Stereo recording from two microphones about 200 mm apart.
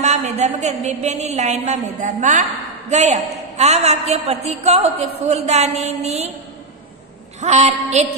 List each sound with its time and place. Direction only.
0.0 s a woman's voice: 35° right (ahead or behind)
7.3 s a woman's voice: 35° right (ahead or behind)